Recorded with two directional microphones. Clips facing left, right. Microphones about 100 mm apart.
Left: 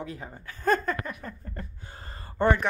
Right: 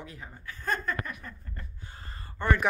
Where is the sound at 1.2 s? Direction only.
40° left (ahead or behind).